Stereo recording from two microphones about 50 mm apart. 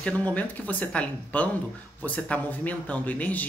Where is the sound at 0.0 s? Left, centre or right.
Left.